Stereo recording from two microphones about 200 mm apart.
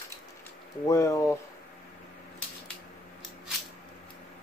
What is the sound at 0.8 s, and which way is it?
Speech, 15° left (ahead or behind).